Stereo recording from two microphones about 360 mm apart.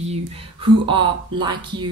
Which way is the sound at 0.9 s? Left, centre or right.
Centre.